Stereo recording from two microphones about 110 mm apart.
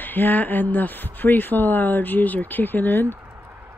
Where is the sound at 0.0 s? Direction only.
15° left (ahead or behind).